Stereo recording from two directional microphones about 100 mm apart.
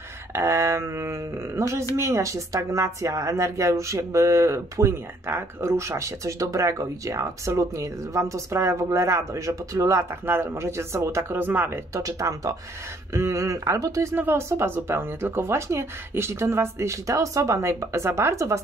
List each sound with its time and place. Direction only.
0.3 s a sound: 30° right (ahead or behind)
2.0 s speech: 30° right (ahead or behind)
10.2 s speech: 20° right (ahead or behind)
11.9 s speech: 35° right (ahead or behind)
14.1 s speech: 25° right (ahead or behind)